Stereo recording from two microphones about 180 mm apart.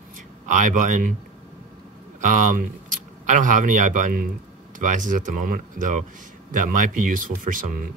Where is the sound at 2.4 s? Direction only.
45° right (ahead or behind).